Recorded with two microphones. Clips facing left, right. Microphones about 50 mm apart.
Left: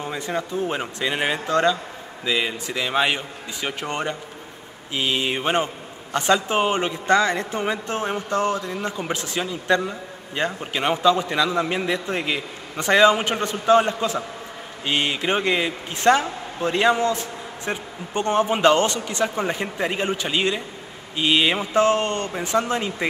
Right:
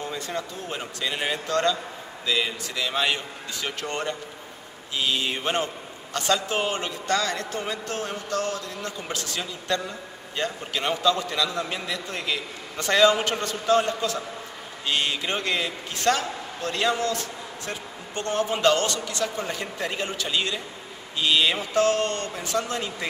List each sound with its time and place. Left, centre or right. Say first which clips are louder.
0.0 s a man's voice: left 4 dB; left